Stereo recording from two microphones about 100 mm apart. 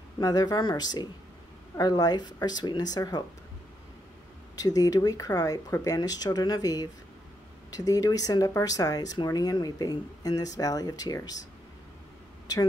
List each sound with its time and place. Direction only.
0.2 s speech: 40° left (ahead or behind)
4.6 s speech: 40° left (ahead or behind)